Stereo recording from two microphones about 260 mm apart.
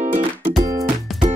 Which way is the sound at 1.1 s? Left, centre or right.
Centre.